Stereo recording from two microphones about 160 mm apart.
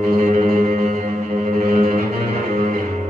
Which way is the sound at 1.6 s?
50° right (ahead or behind).